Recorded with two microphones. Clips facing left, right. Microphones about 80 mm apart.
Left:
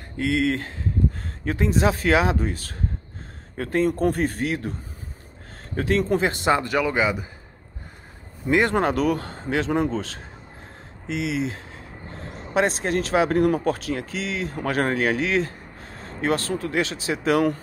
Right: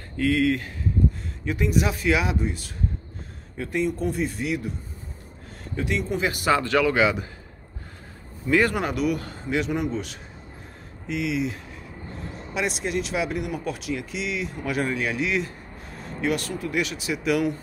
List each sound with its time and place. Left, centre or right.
0.2 s speech: left
5.8 s speech: left
6.4 s speech: left
8.5 s speech: left
8.8 s speech: left
11.1 s speech: left
12.5 s speech: left
14.6 s speech: left